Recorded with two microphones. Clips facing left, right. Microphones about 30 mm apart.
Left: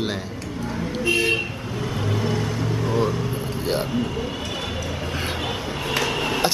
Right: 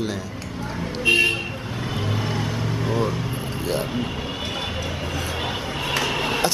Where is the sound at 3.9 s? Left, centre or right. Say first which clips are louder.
Left 2 dB; right.